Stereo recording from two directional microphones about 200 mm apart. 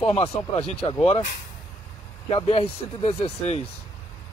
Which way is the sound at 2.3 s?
30° left (ahead or behind).